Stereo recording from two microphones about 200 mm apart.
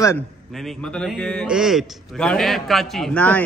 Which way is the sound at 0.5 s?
Centre (ahead or behind).